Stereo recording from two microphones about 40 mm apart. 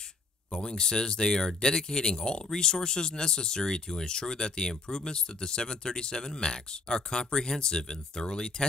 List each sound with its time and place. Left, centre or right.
0.5 s speech: centre